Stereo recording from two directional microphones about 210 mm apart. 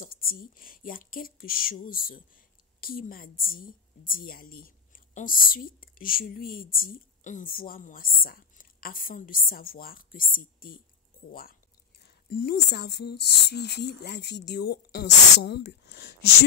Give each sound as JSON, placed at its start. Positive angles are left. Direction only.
{"t": 0.0, "sound": "speech", "side_deg": 45}
{"t": 12.0, "sound": "speech", "side_deg": 45}